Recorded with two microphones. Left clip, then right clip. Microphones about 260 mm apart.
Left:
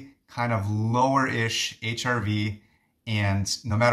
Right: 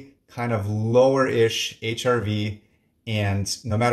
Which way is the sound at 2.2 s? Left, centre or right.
Left.